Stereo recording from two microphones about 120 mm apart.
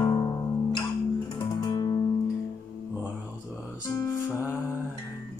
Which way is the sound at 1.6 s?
35° left (ahead or behind).